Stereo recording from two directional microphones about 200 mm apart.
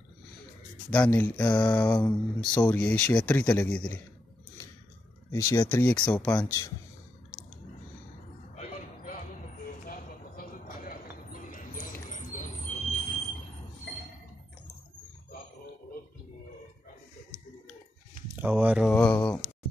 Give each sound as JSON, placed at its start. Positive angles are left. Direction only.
{"t": 0.8, "sound": "speech", "side_deg": 10}
{"t": 5.3, "sound": "speech", "side_deg": 15}
{"t": 8.5, "sound": "a sound", "side_deg": 40}
{"t": 18.3, "sound": "speech", "side_deg": -10}